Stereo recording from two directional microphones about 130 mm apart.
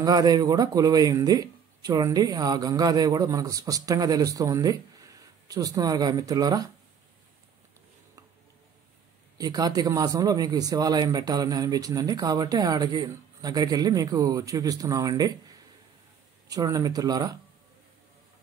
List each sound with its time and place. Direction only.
0.0 s speech: 30° right (ahead or behind)
9.4 s speech: 30° right (ahead or behind)
16.4 s speech: 30° right (ahead or behind)